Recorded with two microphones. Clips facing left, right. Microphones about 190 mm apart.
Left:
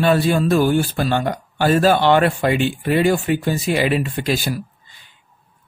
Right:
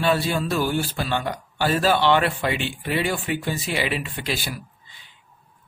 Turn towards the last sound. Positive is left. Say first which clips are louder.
# left 8 dB
turn(degrees=45)  # may be behind; listen again after turning